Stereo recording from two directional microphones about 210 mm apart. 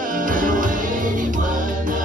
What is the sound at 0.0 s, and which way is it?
Music, 40° right (ahead or behind).